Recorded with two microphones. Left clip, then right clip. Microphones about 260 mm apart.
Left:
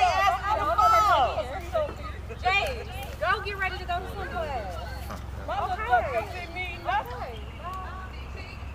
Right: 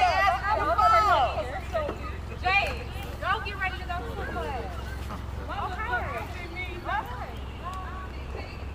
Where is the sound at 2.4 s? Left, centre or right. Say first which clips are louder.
Even; left.